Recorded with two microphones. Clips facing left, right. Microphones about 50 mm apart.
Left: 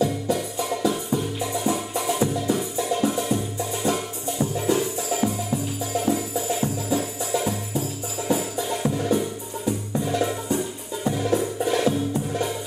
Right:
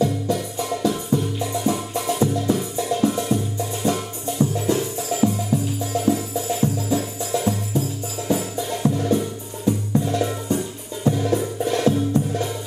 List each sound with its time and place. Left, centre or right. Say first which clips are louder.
0.0 s music: right 1 dB; centre